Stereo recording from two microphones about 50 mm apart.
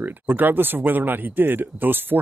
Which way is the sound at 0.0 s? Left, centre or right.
Right.